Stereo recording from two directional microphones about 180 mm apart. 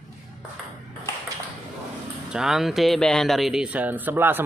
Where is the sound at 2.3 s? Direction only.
5° right (ahead or behind).